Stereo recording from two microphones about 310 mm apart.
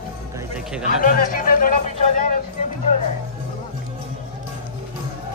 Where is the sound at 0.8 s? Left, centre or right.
Left.